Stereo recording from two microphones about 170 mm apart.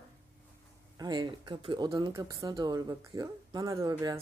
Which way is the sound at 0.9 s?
25° right (ahead or behind).